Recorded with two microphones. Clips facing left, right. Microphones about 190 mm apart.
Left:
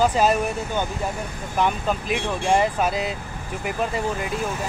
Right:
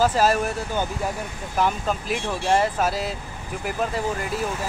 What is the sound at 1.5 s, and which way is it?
Speech, 5° right (ahead or behind).